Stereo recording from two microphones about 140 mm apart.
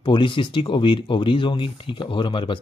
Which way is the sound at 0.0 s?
35° left (ahead or behind).